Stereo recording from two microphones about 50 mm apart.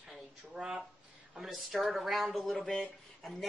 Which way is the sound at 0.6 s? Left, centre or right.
Centre.